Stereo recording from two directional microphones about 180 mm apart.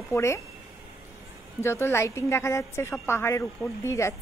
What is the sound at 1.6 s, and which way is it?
A woman's voice, 15° left (ahead or behind).